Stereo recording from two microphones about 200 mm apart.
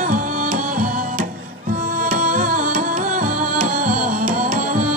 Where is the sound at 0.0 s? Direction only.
40° right (ahead or behind).